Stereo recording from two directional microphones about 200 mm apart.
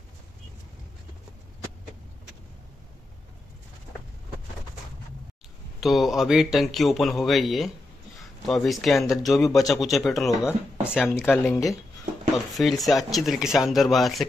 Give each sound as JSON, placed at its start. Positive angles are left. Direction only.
{"t": 5.8, "sound": "a man's voice", "side_deg": 0}
{"t": 12.5, "sound": "a man's voice", "side_deg": 0}